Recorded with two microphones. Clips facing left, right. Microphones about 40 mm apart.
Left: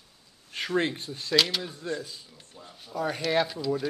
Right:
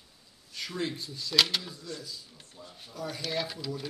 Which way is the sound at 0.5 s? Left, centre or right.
Left.